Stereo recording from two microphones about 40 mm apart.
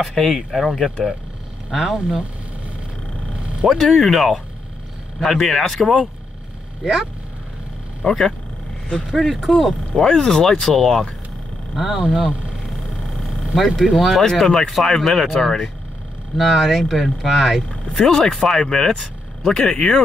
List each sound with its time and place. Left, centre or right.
0.1 s speech: centre
3.6 s speech: centre
8.0 s speech: centre
9.9 s speech: centre
13.7 s speech: centre